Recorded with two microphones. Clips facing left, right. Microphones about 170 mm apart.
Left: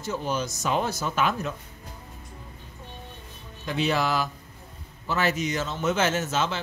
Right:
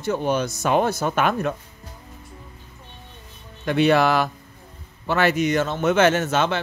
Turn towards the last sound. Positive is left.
turn(degrees=-65)  # may be behind; listen again after turning